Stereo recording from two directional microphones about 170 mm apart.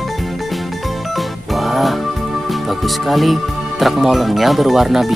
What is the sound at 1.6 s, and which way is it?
Music, centre (ahead or behind).